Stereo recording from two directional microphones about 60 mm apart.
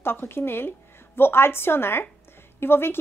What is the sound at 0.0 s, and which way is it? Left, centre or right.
A woman's voice, left.